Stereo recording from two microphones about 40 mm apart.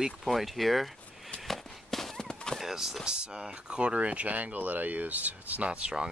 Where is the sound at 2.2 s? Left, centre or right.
Centre.